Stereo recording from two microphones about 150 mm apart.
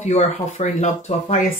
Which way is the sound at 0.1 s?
50° left (ahead or behind).